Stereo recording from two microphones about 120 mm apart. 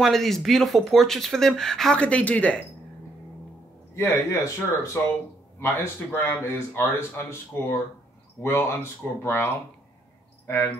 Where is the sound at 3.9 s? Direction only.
25° left (ahead or behind).